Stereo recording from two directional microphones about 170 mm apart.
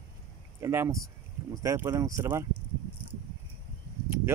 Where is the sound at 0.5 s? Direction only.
15° right (ahead or behind).